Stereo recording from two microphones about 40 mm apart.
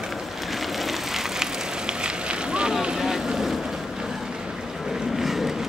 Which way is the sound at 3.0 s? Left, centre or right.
Centre.